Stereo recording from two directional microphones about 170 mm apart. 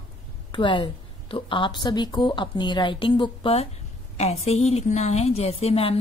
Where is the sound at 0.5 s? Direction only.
30° left (ahead or behind).